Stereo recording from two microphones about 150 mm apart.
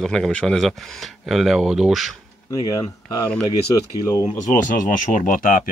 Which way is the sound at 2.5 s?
25° left (ahead or behind).